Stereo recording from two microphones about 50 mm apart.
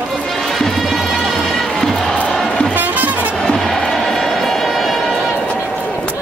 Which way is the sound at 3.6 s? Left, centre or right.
Centre.